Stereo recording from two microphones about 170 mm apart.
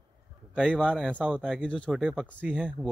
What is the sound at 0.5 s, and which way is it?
Speech, 5° left (ahead or behind).